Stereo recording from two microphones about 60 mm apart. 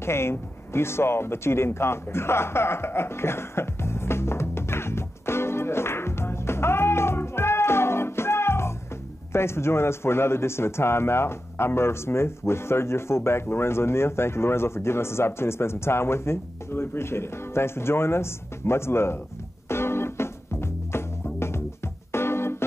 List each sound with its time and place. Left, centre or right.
0.0 s a sound: left
9.3 s a man's voice: left
19.7 s music: left